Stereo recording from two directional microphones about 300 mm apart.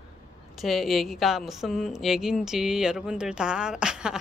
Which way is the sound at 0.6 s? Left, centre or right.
Centre.